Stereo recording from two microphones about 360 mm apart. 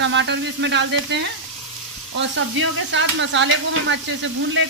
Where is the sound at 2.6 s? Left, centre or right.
Right.